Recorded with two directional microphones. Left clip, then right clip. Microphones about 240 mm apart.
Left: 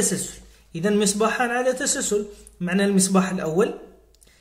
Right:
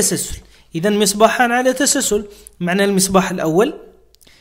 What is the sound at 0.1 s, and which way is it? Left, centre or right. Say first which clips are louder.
A man's voice: right 6 dB; right.